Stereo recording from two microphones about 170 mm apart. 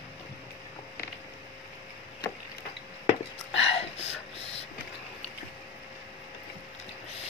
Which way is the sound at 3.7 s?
35° left (ahead or behind).